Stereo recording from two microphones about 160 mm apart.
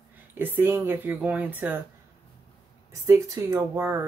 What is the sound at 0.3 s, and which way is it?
Speech, 15° right (ahead or behind).